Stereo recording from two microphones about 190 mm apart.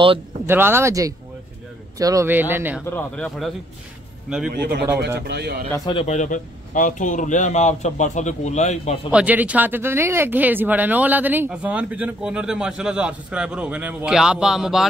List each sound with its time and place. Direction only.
0.5 s speech: 10° right (ahead or behind)
2.8 s a man's voice: 10° left (ahead or behind)
4.5 s speech: 55° right (ahead or behind)
6.0 s a man's voice: 40° left (ahead or behind)
9.1 s speech: 10° right (ahead or behind)